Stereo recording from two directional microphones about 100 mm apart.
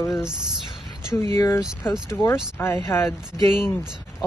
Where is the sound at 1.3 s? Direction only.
30° left (ahead or behind).